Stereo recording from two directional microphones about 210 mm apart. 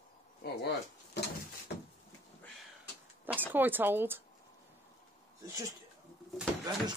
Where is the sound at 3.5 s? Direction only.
10° right (ahead or behind).